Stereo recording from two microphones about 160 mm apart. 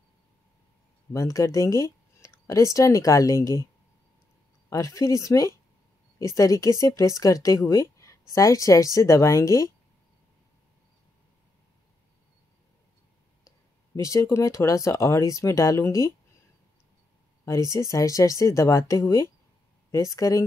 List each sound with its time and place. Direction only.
1.1 s speech: 20° left (ahead or behind)
4.6 s speech: 20° left (ahead or behind)
13.9 s speech: 20° left (ahead or behind)
17.5 s speech: 20° left (ahead or behind)